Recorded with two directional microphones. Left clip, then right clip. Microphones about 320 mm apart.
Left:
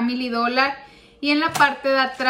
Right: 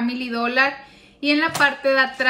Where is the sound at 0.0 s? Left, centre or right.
Centre.